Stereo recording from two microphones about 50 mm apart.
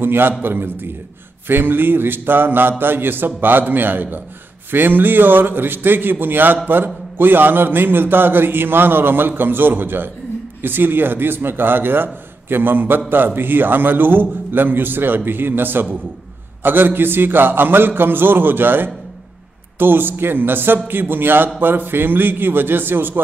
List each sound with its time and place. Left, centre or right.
0.0 s a man's voice: right